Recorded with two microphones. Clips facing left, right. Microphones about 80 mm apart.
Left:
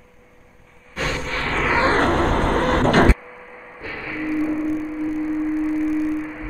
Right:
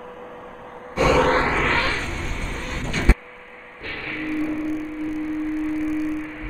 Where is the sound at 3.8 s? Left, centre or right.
Centre.